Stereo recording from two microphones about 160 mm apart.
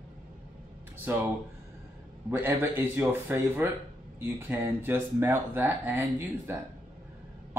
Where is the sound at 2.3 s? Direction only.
15° right (ahead or behind).